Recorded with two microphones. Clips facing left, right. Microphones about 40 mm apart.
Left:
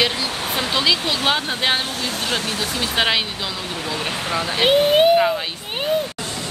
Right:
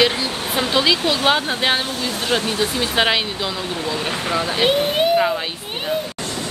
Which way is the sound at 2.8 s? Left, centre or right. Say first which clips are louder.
Right 1 dB; centre.